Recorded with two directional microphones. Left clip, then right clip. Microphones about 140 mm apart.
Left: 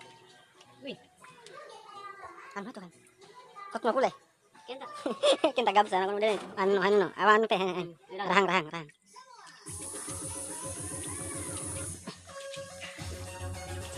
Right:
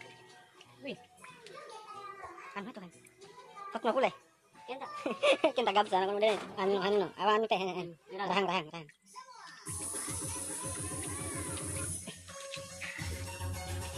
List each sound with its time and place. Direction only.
2.5 s speech: 25° left (ahead or behind)